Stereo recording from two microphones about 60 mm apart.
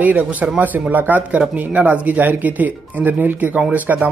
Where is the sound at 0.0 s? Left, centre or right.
Right.